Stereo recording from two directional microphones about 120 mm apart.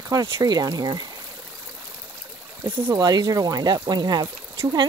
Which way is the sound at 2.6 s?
20° right (ahead or behind).